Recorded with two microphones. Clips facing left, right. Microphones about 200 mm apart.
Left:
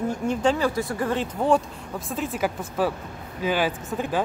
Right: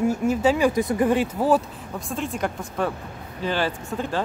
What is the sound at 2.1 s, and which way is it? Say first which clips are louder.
Speech: left 1 dB; 5° left (ahead or behind).